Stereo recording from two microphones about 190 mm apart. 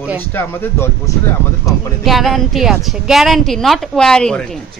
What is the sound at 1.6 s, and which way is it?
A woman's voice, centre (ahead or behind).